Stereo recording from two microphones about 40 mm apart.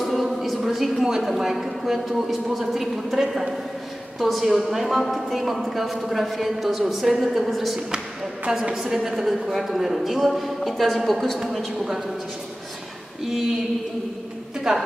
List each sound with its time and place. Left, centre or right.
0.0 s music: centre
0.7 s a sound: centre
1.2 s a woman's voice: centre
8.5 s a woman's voice: centre
14.7 s a woman's voice: centre